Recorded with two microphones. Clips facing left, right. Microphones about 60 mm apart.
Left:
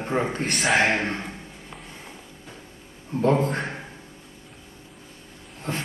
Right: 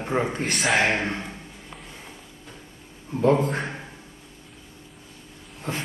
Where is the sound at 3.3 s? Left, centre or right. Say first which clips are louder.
Even; centre.